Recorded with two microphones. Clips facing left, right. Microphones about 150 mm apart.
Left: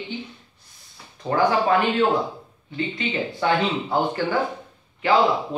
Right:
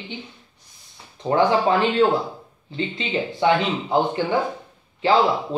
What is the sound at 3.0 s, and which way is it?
A man's voice, 25° right (ahead or behind).